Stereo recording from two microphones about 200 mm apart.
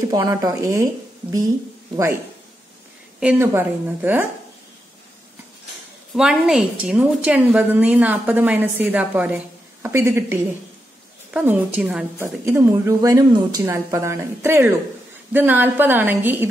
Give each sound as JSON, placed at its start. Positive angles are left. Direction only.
{"t": 0.1, "sound": "a woman's voice", "side_deg": -20}
{"t": 3.2, "sound": "a woman's voice", "side_deg": -10}
{"t": 6.1, "sound": "a woman's voice", "side_deg": -5}